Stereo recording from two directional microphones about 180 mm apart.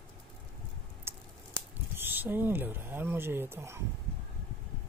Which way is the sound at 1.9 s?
10° right (ahead or behind).